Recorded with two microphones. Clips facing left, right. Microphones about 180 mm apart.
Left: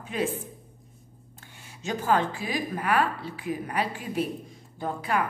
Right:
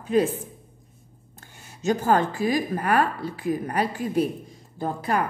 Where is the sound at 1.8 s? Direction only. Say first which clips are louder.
Right 4 dB; 45° right (ahead or behind).